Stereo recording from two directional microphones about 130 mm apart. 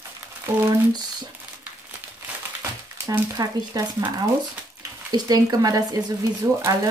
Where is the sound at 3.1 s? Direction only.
30° right (ahead or behind).